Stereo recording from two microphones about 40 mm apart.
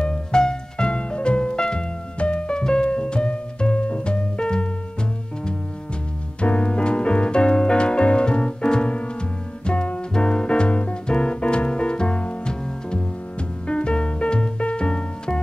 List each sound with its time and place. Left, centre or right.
0.0 s music: left
6.4 s music: left